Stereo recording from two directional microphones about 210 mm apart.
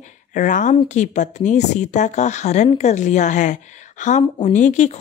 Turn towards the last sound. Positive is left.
turn(degrees=35)  # may be behind; listen again after turning